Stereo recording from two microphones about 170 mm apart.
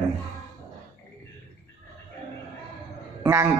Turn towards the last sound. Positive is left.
turn(degrees=-15)  # may be behind; listen again after turning